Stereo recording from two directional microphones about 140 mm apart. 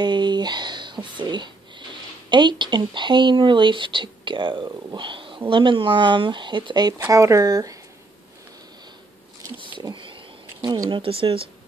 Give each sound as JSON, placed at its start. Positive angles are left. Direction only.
{"t": 0.0, "sound": "music", "side_deg": -30}
{"t": 5.5, "sound": "speech", "side_deg": -35}
{"t": 9.8, "sound": "speech", "side_deg": -35}
{"t": 10.6, "sound": "speech", "side_deg": -25}
{"t": 10.9, "sound": "speech", "side_deg": -40}